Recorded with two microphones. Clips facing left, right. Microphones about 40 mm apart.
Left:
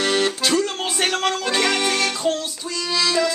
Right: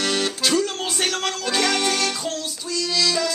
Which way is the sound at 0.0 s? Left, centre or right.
Centre.